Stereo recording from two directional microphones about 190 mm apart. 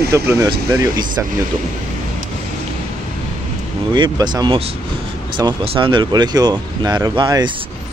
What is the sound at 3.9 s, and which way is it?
Speech, 20° right (ahead or behind).